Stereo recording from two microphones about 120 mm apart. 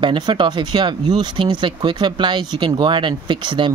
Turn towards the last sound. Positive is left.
turn(degrees=-40)  # may be behind; listen again after turning